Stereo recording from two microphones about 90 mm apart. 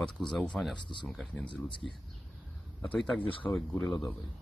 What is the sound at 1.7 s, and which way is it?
Speech, 70° left (ahead or behind).